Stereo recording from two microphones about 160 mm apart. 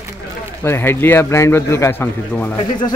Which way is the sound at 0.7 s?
15° left (ahead or behind).